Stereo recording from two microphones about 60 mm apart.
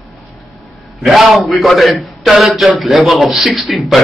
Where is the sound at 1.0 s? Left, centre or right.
Centre.